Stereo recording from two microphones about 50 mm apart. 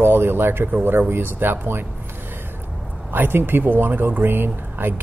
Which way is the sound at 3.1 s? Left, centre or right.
Right.